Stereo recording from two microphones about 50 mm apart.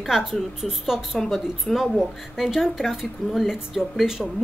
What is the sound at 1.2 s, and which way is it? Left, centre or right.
A woman's voice, centre.